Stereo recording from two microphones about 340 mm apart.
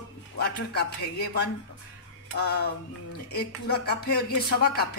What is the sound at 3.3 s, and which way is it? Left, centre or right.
Speech, left.